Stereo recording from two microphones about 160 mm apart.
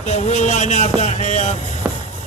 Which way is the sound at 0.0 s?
45° left (ahead or behind).